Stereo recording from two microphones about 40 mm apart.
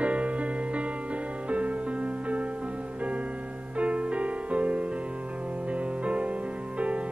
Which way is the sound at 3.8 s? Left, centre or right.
Right.